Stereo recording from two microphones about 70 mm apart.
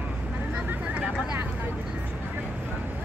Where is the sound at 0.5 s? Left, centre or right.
Centre.